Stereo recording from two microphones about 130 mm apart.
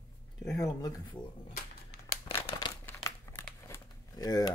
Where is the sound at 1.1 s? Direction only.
10° left (ahead or behind).